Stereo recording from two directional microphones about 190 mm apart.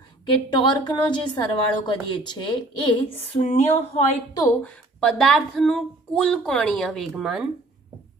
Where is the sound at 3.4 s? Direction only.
35° left (ahead or behind).